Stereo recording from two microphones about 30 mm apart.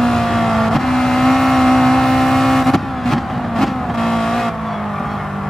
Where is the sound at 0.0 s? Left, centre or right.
Centre.